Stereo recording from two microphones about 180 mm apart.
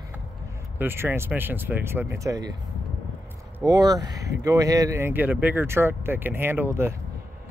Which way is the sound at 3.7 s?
20° right (ahead or behind).